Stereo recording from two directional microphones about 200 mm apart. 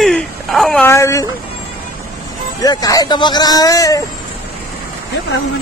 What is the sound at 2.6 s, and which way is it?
Speech, 20° left (ahead or behind).